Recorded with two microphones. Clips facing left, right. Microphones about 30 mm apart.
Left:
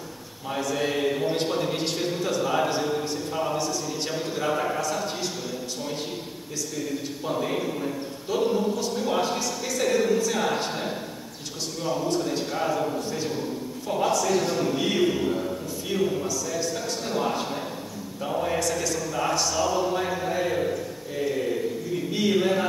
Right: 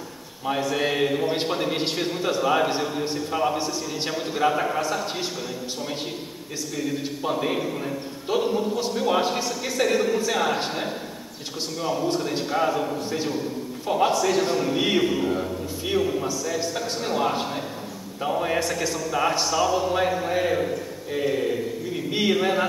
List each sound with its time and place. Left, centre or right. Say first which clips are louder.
0.5 s a man's voice: right 3 dB; right
6.7 s a man's voice: right 4 dB; centre
11.8 s a man's voice: right 1 dB; centre
15.0 s a man's voice: right 1 dB; centre
16.2 s a man's voice: right 2 dB; right